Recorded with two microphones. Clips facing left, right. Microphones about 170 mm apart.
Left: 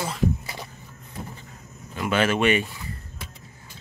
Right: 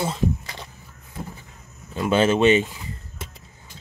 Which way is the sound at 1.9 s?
25° right (ahead or behind).